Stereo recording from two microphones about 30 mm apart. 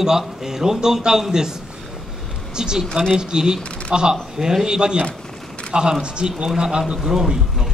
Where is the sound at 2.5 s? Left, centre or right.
Right.